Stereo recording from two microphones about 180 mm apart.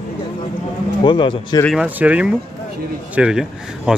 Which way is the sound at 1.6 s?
5° right (ahead or behind).